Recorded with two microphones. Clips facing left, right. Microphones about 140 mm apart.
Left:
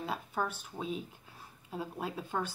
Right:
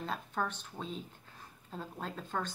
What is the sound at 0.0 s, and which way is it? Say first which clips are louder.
A woman's voice: left 1 dB; 5° left (ahead or behind).